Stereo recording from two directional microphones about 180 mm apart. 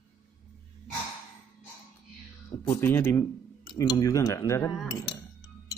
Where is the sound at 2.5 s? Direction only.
15° left (ahead or behind).